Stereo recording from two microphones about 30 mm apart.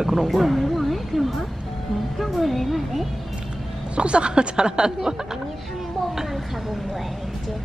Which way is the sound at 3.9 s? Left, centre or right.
Right.